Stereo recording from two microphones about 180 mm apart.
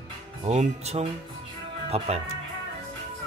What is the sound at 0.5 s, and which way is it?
Speech, 35° right (ahead or behind).